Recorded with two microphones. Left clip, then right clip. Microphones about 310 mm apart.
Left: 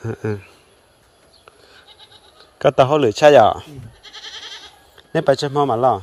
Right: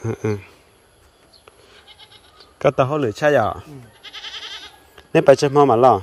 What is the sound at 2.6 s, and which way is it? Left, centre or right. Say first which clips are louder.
Speech: left 4 dB; centre.